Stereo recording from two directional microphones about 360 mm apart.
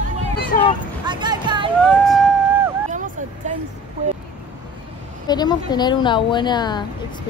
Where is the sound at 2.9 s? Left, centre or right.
Right.